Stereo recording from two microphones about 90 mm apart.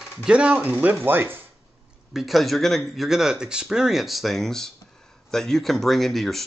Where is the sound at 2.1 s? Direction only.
Centre (ahead or behind).